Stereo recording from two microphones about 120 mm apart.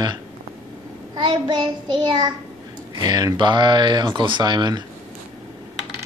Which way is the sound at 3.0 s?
35° right (ahead or behind).